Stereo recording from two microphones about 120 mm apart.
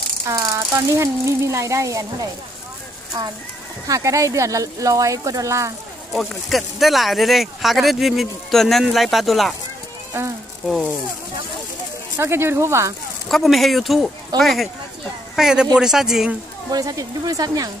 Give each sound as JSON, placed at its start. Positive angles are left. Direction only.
{"t": 0.3, "sound": "speech", "side_deg": -30}
{"t": 6.1, "sound": "speech", "side_deg": 0}
{"t": 12.2, "sound": "speech", "side_deg": -20}
{"t": 13.3, "sound": "speech", "side_deg": 0}
{"t": 16.7, "sound": "speech", "side_deg": -30}